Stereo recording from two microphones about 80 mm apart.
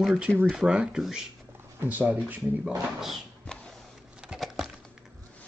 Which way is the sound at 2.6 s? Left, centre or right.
Centre.